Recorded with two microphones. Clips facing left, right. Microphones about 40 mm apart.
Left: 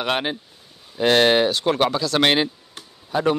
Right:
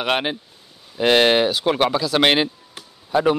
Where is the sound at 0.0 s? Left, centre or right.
Centre.